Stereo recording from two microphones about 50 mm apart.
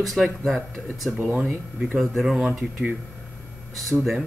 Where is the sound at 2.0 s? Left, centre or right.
Centre.